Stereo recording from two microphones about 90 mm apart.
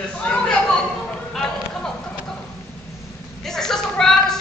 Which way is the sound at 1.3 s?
5° left (ahead or behind).